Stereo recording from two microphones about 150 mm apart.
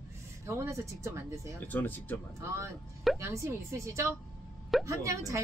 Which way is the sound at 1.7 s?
10° left (ahead or behind).